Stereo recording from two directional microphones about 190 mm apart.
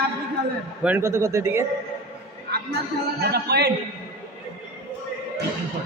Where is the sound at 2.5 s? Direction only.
55° right (ahead or behind).